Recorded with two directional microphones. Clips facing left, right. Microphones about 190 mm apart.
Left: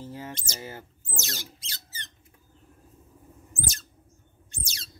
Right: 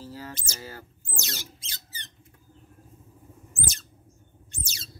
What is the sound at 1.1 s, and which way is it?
Speech, 20° right (ahead or behind).